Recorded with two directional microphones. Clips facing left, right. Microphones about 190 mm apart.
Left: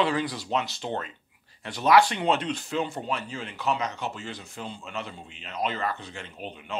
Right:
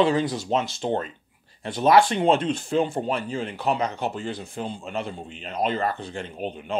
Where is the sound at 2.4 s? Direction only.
50° right (ahead or behind).